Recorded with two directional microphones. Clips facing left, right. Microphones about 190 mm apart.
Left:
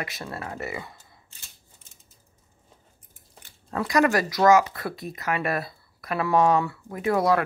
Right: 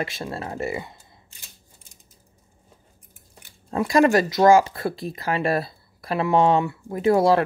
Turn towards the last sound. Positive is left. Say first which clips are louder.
# right 5 dB
turn(degrees=-30)  # may be behind; listen again after turning